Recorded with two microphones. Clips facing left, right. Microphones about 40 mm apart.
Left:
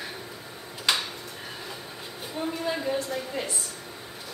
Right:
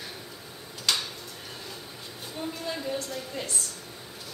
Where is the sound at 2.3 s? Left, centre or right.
Centre.